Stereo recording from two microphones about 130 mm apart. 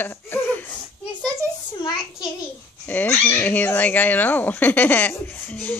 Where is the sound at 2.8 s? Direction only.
15° left (ahead or behind).